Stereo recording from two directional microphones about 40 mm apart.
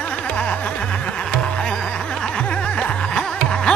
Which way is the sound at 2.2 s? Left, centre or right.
Left.